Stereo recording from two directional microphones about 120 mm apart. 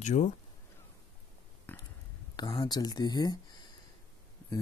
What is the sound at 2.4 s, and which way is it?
Speech, 40° left (ahead or behind).